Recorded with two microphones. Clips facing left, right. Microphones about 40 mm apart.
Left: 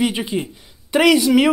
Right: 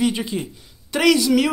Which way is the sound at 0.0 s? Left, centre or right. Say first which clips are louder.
Left 1 dB; left.